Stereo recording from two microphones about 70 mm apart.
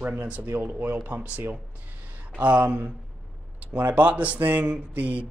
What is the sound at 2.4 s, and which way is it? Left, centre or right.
Speech, right.